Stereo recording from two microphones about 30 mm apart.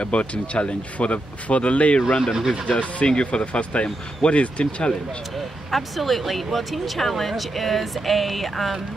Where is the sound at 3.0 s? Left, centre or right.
Left.